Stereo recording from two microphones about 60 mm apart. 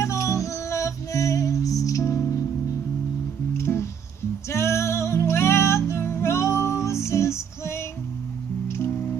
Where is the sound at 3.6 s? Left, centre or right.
Left.